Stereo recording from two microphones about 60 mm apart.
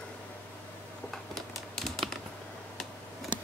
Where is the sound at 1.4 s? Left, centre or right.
Centre.